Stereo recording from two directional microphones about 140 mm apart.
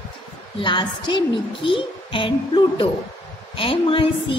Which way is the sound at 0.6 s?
35° left (ahead or behind).